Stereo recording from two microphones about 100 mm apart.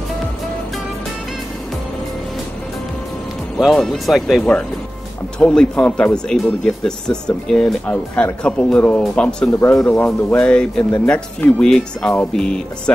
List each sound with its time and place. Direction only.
3.5 s speech: 5° left (ahead or behind)
9.5 s speech: 25° left (ahead or behind); by 12.9 s 10° left (ahead or behind)